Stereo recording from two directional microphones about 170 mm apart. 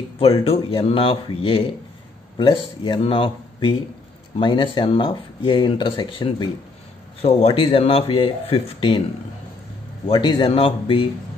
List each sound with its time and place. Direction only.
0.2 s speech: 35° left (ahead or behind)
10.0 s speech: 30° left (ahead or behind)